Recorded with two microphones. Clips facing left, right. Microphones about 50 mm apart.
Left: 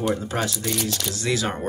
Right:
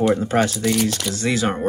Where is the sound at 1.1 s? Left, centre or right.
Right.